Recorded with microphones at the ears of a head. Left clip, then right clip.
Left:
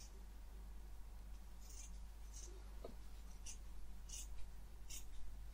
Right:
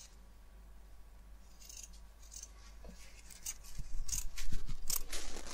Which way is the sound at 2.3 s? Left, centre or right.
Right.